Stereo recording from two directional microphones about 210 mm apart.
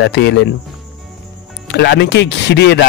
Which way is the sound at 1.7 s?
55° left (ahead or behind).